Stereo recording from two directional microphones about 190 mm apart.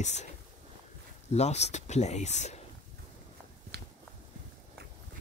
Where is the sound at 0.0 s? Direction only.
35° left (ahead or behind).